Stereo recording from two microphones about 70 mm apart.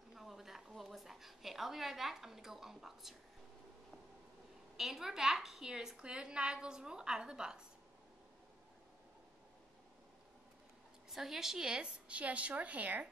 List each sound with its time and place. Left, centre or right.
0.1 s a sound: centre
4.7 s a woman's voice: centre
11.1 s a woman's voice: centre; by 13.1 s right